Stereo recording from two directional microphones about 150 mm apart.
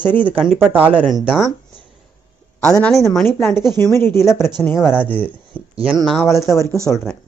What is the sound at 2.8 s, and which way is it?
Speech, centre (ahead or behind).